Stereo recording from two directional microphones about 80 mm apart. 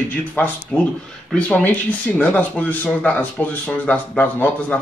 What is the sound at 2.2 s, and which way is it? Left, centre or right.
Speech, left.